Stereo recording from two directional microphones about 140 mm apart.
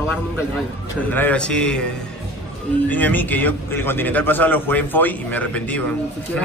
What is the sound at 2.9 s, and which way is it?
A man's voice, 10° left (ahead or behind).